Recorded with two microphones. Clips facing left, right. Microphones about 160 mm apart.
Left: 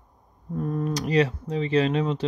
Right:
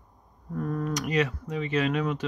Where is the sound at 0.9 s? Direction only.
30° left (ahead or behind).